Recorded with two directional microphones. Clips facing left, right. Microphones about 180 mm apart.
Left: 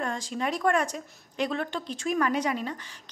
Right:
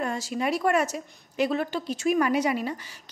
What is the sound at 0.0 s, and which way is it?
Speech, 5° right (ahead or behind).